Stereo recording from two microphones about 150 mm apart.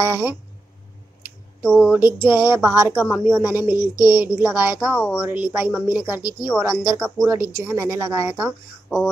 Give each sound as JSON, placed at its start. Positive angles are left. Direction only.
{"t": 0.0, "sound": "speech", "side_deg": -20}
{"t": 1.6, "sound": "speech", "side_deg": 0}
{"t": 2.4, "sound": "speech", "side_deg": -15}
{"t": 3.9, "sound": "a woman's voice", "side_deg": 25}
{"t": 4.2, "sound": "speech", "side_deg": -10}
{"t": 8.8, "sound": "speech", "side_deg": 5}